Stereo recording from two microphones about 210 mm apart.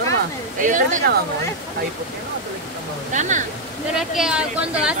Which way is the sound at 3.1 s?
35° right (ahead or behind).